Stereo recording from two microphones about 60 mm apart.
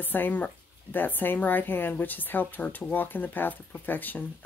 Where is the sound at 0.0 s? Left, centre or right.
Left.